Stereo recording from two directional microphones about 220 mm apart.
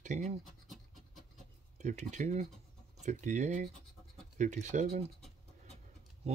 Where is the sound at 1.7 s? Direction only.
35° right (ahead or behind).